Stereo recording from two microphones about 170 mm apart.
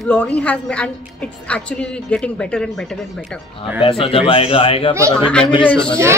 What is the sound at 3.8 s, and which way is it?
A man's voice, 35° left (ahead or behind).